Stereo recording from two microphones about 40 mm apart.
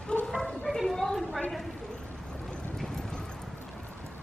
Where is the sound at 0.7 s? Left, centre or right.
Centre.